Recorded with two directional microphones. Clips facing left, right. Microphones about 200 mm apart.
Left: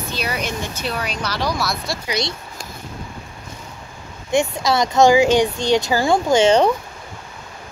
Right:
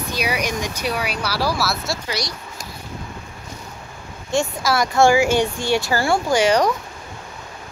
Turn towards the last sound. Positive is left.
turn(degrees=25)  # may be behind; listen again after turning